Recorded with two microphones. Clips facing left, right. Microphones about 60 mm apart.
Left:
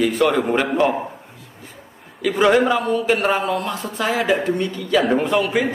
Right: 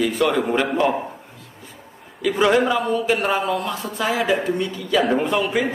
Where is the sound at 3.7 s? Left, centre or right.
Centre.